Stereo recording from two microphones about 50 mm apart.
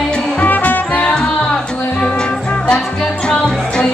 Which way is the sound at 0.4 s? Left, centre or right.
Left.